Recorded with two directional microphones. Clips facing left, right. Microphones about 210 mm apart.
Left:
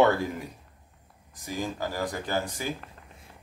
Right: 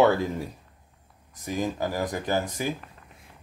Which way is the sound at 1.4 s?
20° right (ahead or behind).